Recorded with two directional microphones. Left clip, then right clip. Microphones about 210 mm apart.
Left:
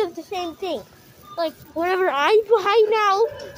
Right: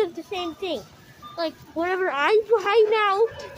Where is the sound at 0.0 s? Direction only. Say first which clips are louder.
Left 1 dB; 5° left (ahead or behind).